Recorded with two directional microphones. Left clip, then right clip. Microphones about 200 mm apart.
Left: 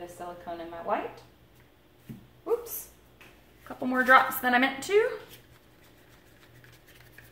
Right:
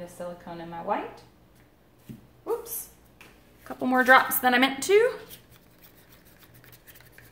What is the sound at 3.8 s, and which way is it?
A woman's voice, 50° right (ahead or behind).